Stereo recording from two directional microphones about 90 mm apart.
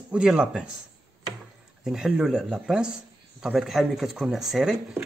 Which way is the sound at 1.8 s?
5° right (ahead or behind).